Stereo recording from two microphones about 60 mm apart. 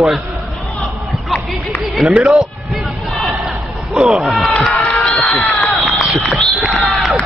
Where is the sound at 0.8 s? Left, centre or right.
Centre.